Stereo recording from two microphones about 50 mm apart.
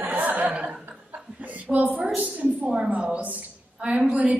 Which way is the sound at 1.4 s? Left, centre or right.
Right.